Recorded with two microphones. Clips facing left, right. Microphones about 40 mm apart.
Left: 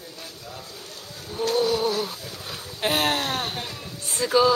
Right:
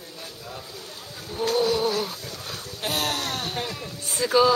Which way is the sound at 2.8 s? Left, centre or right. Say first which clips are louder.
Left 4 dB; left.